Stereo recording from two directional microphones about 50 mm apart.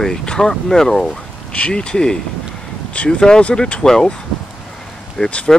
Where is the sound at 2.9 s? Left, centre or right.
Left.